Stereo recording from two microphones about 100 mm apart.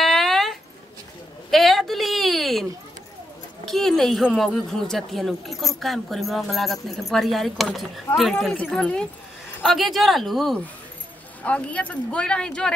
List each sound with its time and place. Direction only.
0.0 s a sound: centre (ahead or behind)
3.6 s speech: centre (ahead or behind)
11.4 s speech: 15° left (ahead or behind)